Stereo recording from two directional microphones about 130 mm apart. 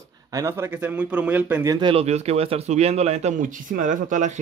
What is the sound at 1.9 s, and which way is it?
Speech, 55° right (ahead or behind).